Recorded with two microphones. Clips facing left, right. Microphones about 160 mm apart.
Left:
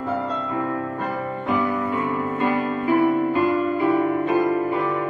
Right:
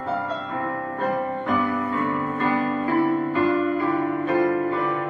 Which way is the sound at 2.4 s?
15° left (ahead or behind).